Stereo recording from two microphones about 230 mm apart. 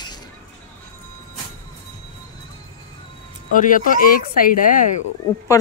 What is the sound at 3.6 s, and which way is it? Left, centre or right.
Speech, left.